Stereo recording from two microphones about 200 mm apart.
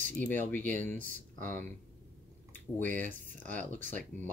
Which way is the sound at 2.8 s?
5° left (ahead or behind).